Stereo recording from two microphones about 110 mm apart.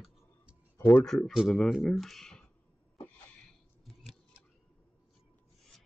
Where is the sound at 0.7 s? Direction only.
20° left (ahead or behind).